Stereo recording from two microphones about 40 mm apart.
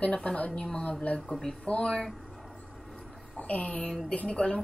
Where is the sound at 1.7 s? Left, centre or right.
Left.